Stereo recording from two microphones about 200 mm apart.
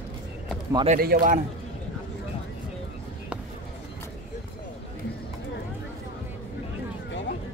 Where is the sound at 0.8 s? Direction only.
50° right (ahead or behind).